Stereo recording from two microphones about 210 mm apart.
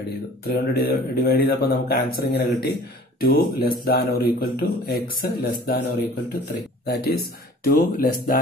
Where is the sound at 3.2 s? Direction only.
45° left (ahead or behind).